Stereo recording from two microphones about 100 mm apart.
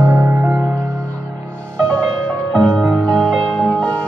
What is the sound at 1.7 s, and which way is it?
Music, 10° left (ahead or behind).